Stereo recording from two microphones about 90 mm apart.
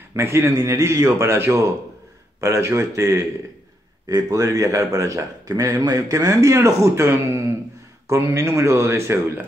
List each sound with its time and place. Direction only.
0.1 s a man's voice: 30° right (ahead or behind)